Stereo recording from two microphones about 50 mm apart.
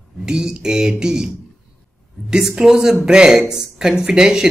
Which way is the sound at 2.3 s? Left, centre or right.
Centre.